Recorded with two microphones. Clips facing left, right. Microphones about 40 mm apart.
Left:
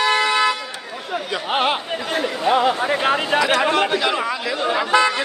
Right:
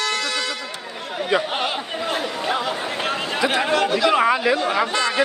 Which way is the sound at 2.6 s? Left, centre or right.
Centre.